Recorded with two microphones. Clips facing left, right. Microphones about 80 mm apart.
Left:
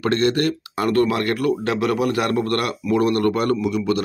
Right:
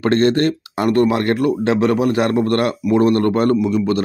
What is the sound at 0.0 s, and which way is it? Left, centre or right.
Speech, right.